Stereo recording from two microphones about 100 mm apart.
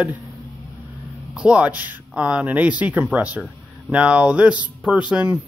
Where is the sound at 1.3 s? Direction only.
10° right (ahead or behind).